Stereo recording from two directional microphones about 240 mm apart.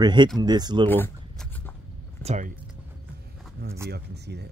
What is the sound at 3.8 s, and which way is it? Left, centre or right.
Speech, right.